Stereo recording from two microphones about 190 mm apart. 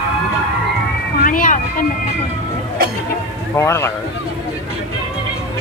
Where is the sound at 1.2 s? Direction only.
45° left (ahead or behind).